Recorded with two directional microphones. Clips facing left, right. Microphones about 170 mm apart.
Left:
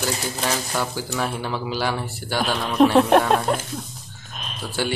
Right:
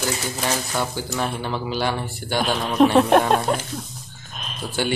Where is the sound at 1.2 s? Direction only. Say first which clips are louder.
Right 1 dB; 5° left (ahead or behind).